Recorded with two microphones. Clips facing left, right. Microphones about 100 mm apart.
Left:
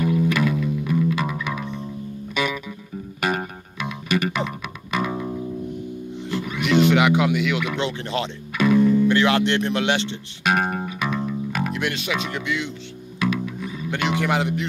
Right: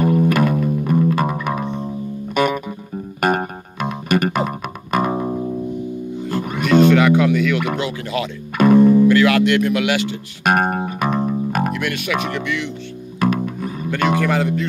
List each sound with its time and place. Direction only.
0.0 s music: 45° right (ahead or behind)
6.9 s speech: 15° left (ahead or behind)
7.5 s speech: 45° right (ahead or behind)
7.8 s speech: 25° left (ahead or behind)
8.5 s music: 45° right (ahead or behind)
9.1 s speech: 25° left (ahead or behind)
10.4 s music: 50° right (ahead or behind)
11.7 s speech: 25° left (ahead or behind)
12.1 s speech: 55° right (ahead or behind)
12.4 s speech: 20° left (ahead or behind)
13.2 s music: 50° right (ahead or behind)
13.9 s speech: 45° right (ahead or behind)
14.2 s speech: 20° left (ahead or behind)